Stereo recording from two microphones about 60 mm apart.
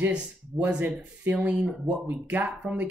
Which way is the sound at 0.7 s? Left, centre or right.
Right.